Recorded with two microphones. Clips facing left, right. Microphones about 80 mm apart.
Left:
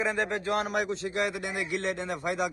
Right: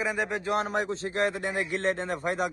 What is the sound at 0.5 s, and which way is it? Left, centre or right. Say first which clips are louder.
A man's voice: right 1 dB; right.